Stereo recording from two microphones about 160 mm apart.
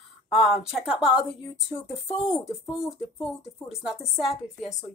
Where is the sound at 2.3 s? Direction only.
5° right (ahead or behind).